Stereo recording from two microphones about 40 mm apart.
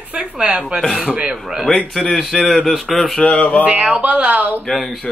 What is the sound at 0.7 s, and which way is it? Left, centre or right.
Speech, centre.